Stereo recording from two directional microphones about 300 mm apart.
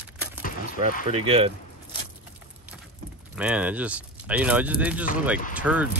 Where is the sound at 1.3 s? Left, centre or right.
Centre.